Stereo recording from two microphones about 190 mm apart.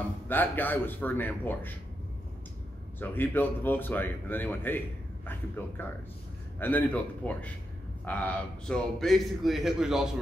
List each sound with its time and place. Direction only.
0.3 s speech: 10° left (ahead or behind)
3.0 s a man's voice: 10° left (ahead or behind)